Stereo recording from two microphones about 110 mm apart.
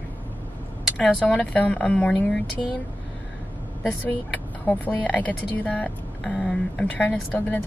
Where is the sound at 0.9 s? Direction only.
10° left (ahead or behind).